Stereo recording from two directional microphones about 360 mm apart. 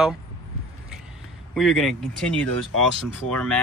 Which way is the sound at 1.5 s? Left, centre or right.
Centre.